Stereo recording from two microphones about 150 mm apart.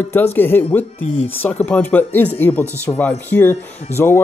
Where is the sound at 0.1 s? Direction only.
15° left (ahead or behind).